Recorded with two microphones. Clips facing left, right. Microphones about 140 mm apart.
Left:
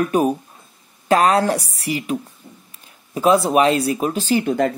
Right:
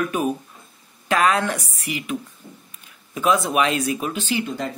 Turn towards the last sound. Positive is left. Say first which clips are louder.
# left 9 dB
turn(degrees=55)  # may be behind; listen again after turning